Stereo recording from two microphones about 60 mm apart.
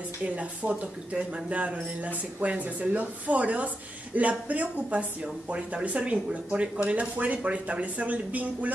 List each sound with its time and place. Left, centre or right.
0.2 s speech: right